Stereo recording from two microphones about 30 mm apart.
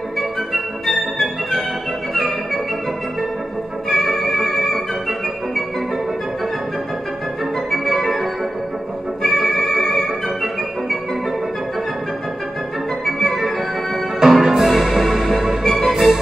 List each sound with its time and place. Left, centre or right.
3.9 s music: centre
4.2 s music: centre
4.6 s organ: centre
7.9 s organ: centre
9.7 s music: centre
13.0 s organ: centre
14.2 s music: centre
15.6 s music: centre
15.9 s music: centre